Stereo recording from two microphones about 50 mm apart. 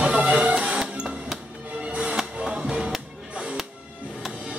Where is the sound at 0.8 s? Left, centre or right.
Centre.